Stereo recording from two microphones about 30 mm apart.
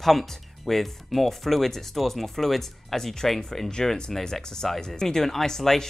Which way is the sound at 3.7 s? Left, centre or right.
Left.